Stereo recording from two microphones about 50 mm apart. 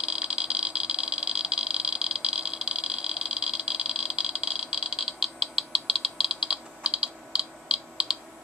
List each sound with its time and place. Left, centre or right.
0.0 s vehicle: centre
6.8 s computer keyboard: right